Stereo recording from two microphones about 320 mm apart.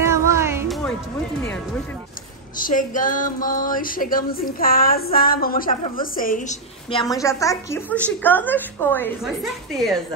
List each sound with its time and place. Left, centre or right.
0.0 s music: centre
2.5 s a sound: left
6.1 s a woman's voice: left; by 9.9 s centre